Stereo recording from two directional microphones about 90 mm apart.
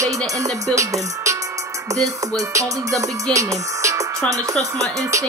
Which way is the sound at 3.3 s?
35° right (ahead or behind).